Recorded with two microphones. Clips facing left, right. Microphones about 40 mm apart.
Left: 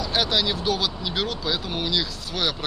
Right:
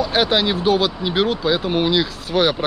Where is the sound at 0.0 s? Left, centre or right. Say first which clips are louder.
Right 6 dB; right.